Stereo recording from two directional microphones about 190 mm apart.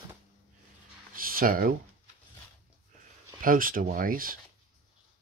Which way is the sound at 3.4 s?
45° right (ahead or behind).